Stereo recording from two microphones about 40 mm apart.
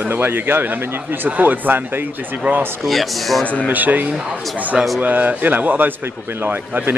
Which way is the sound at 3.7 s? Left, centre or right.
Right.